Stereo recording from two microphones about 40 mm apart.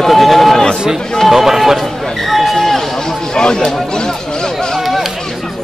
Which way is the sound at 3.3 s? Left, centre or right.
Left.